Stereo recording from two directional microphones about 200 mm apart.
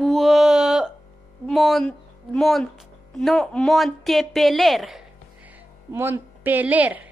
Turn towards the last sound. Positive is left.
turn(degrees=-10)  # may be behind; listen again after turning